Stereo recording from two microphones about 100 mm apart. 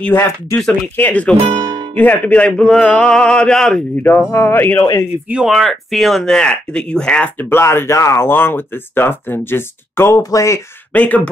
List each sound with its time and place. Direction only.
0.0 s speech: 20° left (ahead or behind)
1.4 s speech: 60° right (ahead or behind)
2.0 s speech: 15° left (ahead or behind)
4.3 s speech: 25° left (ahead or behind)
5.3 s speech: 5° right (ahead or behind)
7.4 s speech: 25° left (ahead or behind)
10.9 s speech: 15° left (ahead or behind)